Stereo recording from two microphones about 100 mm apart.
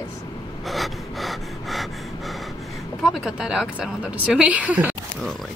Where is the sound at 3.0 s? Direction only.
5° right (ahead or behind).